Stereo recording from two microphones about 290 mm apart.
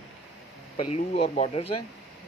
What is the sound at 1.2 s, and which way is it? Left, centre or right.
Speech, left.